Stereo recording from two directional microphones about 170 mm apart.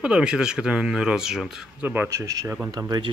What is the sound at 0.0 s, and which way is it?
Speech, 5° right (ahead or behind).